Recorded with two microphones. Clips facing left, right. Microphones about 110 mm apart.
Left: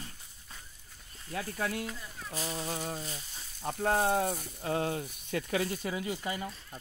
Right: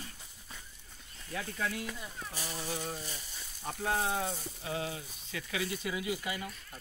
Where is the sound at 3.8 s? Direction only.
45° left (ahead or behind).